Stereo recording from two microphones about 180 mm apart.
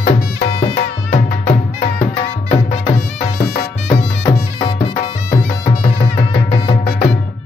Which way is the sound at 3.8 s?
40° left (ahead or behind).